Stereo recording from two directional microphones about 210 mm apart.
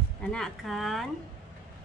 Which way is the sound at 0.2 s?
5° left (ahead or behind).